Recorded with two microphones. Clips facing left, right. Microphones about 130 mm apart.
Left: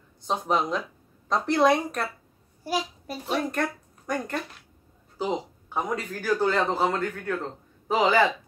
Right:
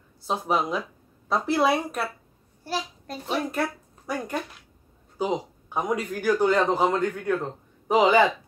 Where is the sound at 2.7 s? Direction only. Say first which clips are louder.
Left 2 dB; 10° left (ahead or behind).